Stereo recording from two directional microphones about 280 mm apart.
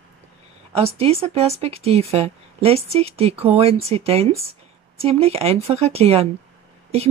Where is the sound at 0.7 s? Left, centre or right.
Right.